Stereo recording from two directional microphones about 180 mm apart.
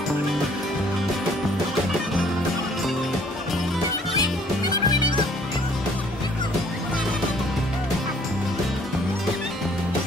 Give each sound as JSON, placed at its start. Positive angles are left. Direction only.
{"t": 4.2, "sound": "music", "side_deg": 20}